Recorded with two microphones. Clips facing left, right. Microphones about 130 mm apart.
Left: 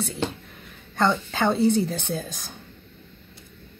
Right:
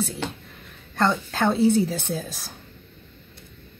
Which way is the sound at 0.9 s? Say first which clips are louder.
Even; centre (ahead or behind).